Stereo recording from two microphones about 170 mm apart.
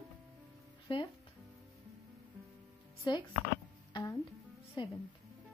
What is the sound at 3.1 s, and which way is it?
Speech, 25° left (ahead or behind).